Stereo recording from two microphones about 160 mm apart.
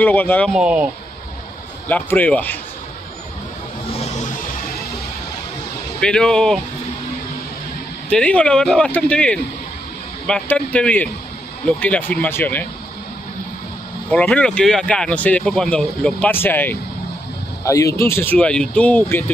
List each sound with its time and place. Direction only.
0.0 s speech: 10° left (ahead or behind)
0.5 s speech: 5° right (ahead or behind)
1.9 s speech: 10° left (ahead or behind)
4.0 s vehicle: 45° left (ahead or behind)
5.9 s speech: 5° left (ahead or behind)
8.1 s speech: 5° left (ahead or behind)
14.1 s speech: 10° left (ahead or behind)